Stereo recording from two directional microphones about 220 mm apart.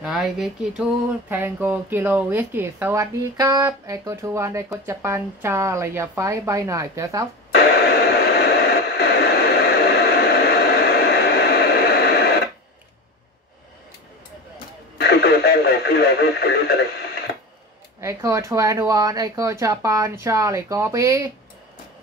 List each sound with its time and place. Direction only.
0.0 s a sound: centre (ahead or behind)
1.3 s speech: 10° right (ahead or behind)
7.5 s radio: 50° left (ahead or behind)
15.0 s radio: 45° left (ahead or behind)
18.0 s speech: 15° right (ahead or behind)